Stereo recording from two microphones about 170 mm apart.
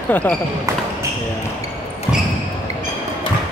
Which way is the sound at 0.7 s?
20° right (ahead or behind).